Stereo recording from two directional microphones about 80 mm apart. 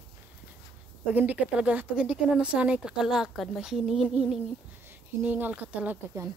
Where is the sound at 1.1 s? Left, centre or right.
Right.